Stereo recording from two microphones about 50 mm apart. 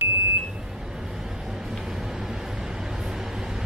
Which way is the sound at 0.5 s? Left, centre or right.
Centre.